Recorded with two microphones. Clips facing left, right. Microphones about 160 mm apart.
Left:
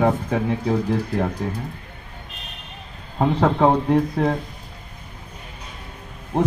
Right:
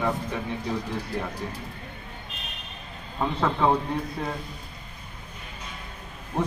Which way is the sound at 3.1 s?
60° left (ahead or behind).